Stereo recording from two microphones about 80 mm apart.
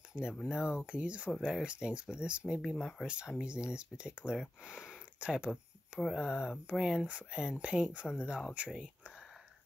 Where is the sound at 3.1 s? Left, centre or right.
Centre.